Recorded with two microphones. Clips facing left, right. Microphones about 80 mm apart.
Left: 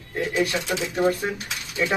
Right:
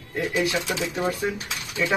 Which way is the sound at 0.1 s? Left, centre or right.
Centre.